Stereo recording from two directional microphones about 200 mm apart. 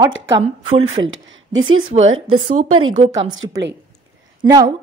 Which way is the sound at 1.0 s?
75° right (ahead or behind).